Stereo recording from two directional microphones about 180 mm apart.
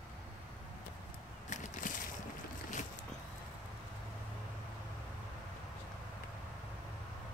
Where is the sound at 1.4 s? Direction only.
45° left (ahead or behind).